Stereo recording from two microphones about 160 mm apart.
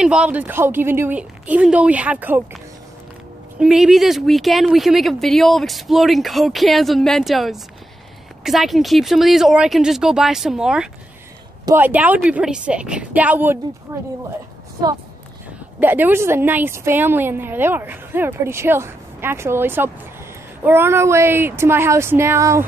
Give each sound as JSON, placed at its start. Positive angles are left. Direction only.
{"t": 0.0, "sound": "a woman's voice", "side_deg": -5}
{"t": 3.5, "sound": "a woman's voice", "side_deg": -5}
{"t": 15.8, "sound": "a woman's voice", "side_deg": -10}